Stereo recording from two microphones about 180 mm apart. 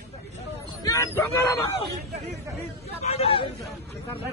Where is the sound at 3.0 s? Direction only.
35° left (ahead or behind).